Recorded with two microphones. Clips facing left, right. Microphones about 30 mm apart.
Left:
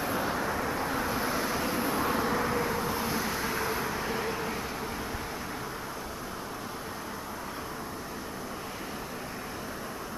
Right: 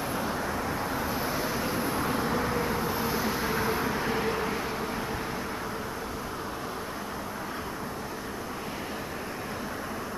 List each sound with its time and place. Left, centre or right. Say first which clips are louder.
0.0 s vehicle: left 1 dB; centre